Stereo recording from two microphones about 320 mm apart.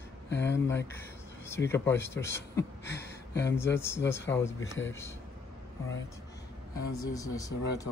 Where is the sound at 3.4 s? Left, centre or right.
Centre.